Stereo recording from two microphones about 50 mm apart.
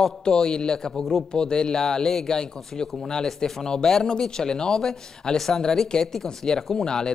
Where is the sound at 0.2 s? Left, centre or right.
Centre.